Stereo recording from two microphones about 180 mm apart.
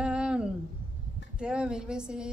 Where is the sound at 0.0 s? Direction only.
5° right (ahead or behind).